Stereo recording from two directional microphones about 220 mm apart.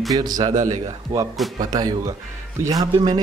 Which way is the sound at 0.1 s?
20° right (ahead or behind).